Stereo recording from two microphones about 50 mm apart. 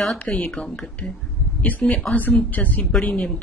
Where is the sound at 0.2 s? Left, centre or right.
Left.